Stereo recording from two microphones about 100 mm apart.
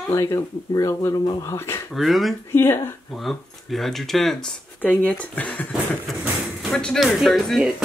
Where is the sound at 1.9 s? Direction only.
Centre (ahead or behind).